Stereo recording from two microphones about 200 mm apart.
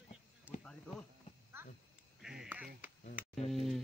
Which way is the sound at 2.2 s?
5° right (ahead or behind).